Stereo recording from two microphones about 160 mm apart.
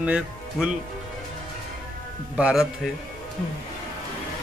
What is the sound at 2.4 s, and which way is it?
Speech, 5° right (ahead or behind).